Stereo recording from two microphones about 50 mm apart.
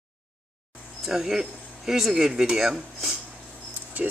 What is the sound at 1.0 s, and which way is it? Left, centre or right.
Speech, centre.